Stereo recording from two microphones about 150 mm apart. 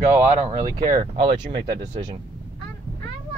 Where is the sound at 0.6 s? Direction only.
25° right (ahead or behind).